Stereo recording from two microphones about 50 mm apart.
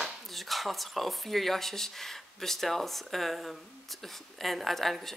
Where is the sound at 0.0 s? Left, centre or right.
Centre.